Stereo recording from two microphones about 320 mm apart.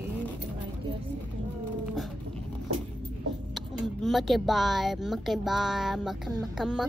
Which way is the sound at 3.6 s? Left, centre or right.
Centre.